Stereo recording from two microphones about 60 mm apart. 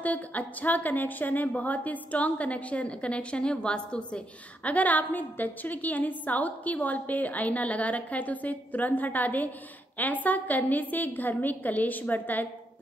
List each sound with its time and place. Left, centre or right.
0.0 s a woman's voice: left